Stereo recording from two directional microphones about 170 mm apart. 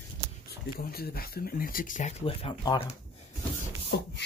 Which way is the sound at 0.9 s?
65° left (ahead or behind).